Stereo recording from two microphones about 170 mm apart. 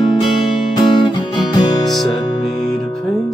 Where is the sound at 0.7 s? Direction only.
25° left (ahead or behind).